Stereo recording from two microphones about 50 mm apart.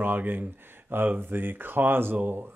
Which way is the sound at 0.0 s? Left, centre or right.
Right.